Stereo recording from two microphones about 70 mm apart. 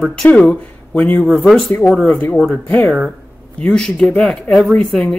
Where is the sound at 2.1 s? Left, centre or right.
Left.